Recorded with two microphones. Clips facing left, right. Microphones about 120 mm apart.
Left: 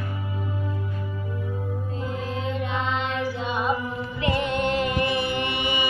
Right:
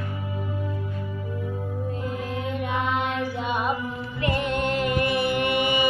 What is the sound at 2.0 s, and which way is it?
Music, 55° right (ahead or behind).